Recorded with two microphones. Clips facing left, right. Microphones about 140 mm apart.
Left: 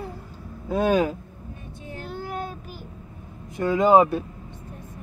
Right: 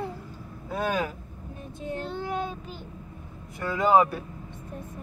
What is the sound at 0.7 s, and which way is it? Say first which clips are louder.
Speech: left 7 dB; 25° left (ahead or behind).